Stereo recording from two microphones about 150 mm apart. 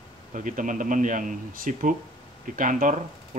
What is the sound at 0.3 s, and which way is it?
Speech, 60° right (ahead or behind).